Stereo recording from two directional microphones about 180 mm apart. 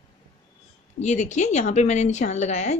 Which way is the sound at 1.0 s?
40° left (ahead or behind).